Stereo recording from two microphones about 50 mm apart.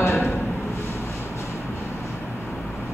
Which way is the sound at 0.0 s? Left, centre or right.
Left.